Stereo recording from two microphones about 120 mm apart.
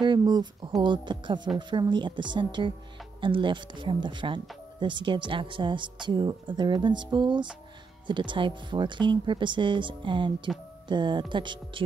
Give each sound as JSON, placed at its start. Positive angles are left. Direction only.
{"t": 0.0, "sound": "speech", "side_deg": -40}